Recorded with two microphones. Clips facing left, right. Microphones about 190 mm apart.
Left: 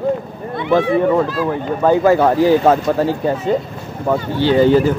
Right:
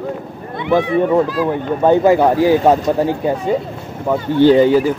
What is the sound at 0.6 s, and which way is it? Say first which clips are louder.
Speech: even; 15° right (ahead or behind).